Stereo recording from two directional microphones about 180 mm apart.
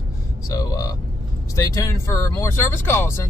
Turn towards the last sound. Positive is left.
turn(degrees=15)  # may be behind; listen again after turning